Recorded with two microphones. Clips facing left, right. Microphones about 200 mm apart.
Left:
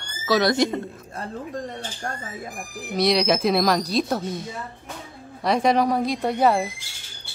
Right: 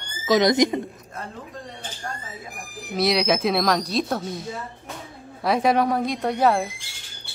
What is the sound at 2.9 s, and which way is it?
Speech, centre (ahead or behind).